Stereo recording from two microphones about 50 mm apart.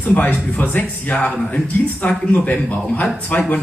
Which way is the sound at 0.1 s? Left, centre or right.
Left.